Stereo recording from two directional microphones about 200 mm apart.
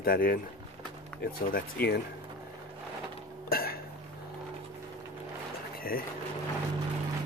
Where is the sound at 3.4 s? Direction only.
45° left (ahead or behind).